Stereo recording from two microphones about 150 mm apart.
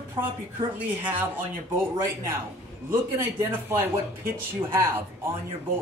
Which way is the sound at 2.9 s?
15° right (ahead or behind).